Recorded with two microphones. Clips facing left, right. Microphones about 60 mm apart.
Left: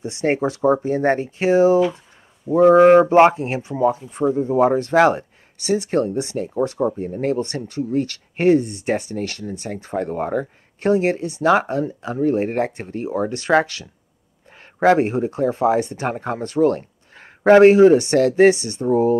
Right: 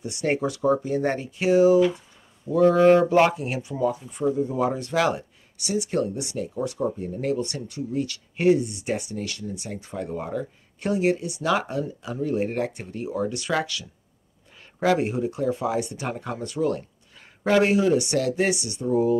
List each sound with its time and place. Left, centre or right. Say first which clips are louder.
0.0 s speech: left 5 dB; left